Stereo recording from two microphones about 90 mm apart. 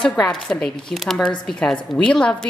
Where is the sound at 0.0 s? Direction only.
10° left (ahead or behind).